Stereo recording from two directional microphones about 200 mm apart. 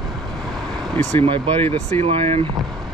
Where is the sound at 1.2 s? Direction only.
25° right (ahead or behind).